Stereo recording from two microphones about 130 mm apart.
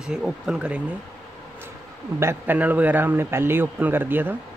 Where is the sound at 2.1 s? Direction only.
15° right (ahead or behind).